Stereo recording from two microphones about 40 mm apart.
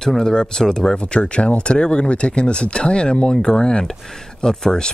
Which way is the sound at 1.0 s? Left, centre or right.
Left.